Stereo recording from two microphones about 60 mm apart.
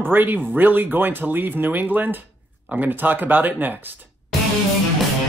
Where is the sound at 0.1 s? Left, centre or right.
Right.